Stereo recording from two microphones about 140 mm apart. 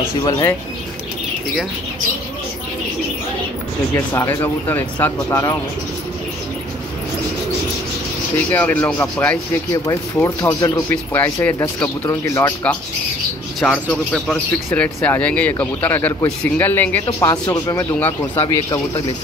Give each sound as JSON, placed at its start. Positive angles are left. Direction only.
{"t": 0.2, "sound": "speech", "side_deg": 25}
{"t": 3.9, "sound": "speech", "side_deg": 15}
{"t": 8.5, "sound": "speech", "side_deg": 10}
{"t": 13.6, "sound": "speech", "side_deg": 5}